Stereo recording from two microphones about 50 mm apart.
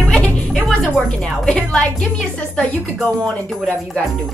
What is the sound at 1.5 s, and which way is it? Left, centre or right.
Speech, centre.